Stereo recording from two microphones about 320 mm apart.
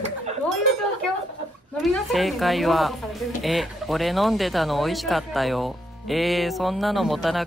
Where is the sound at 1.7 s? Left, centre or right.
Centre.